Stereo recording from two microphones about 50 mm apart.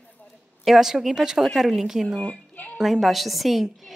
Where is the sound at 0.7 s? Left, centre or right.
Centre.